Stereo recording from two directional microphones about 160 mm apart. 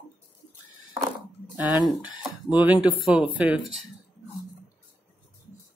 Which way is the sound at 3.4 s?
10° right (ahead or behind).